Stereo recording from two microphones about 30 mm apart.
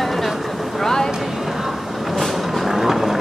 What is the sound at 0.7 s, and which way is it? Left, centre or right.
Vehicle, centre.